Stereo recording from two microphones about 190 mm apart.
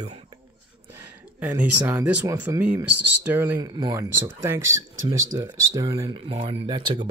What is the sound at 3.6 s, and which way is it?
Speech, 20° right (ahead or behind).